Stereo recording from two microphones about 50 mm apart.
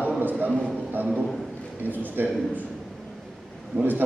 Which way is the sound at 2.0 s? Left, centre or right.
Right.